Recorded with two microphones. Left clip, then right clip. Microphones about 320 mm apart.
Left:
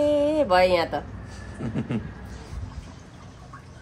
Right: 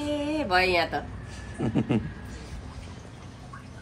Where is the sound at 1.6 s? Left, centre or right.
Centre.